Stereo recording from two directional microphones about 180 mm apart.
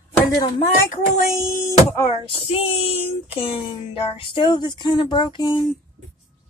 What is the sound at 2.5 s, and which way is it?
Speech, 35° left (ahead or behind).